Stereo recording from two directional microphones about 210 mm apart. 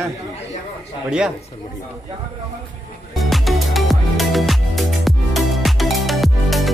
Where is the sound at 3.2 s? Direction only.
Centre (ahead or behind).